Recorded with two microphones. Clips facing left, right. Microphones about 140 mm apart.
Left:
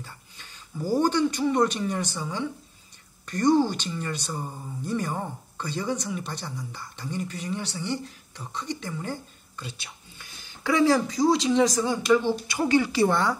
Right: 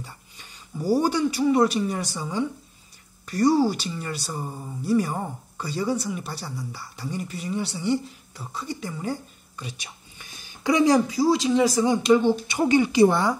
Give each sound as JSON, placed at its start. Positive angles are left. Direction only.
{"t": 0.0, "sound": "a man's voice", "side_deg": -10}
{"t": 11.1, "sound": "speech", "side_deg": 0}